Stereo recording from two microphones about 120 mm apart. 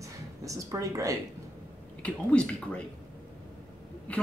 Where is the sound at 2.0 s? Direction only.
10° left (ahead or behind).